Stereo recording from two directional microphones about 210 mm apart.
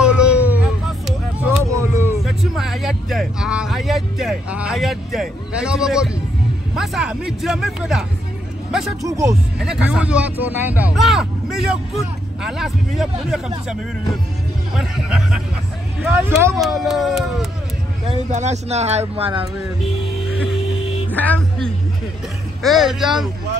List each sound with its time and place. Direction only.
0.0 s a sound: 5° right (ahead or behind)
2.2 s a sound: centre (ahead or behind)
6.7 s speech: centre (ahead or behind)
9.0 s speech: 15° right (ahead or behind)
9.6 s speech: 5° right (ahead or behind)
14.8 s speech: centre (ahead or behind)
16.6 s speech: centre (ahead or behind)
18.1 s speech: 35° right (ahead or behind)
21.1 s music: 5° left (ahead or behind)
22.6 s speech: centre (ahead or behind)